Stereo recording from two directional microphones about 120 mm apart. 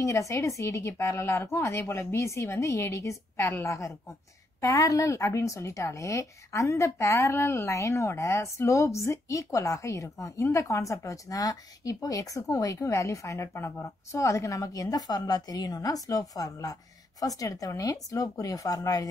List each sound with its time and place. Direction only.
0.0 s speech: 25° left (ahead or behind)